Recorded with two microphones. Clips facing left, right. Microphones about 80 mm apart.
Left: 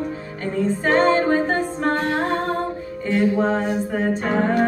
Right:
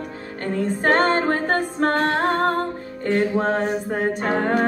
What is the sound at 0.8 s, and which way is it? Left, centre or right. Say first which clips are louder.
Music: left 1 dB; right.